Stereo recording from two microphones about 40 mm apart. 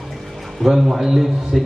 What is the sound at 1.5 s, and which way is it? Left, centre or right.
Speech, centre.